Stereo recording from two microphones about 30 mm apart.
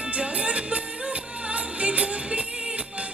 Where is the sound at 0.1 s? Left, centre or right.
Right.